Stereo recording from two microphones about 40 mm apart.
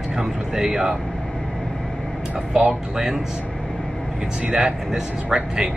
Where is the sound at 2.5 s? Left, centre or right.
Centre.